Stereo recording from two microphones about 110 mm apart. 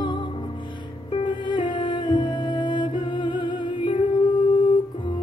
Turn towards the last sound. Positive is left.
turn(degrees=45)  # may be behind; listen again after turning